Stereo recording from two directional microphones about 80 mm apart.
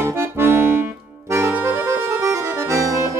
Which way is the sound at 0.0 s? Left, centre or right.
Right.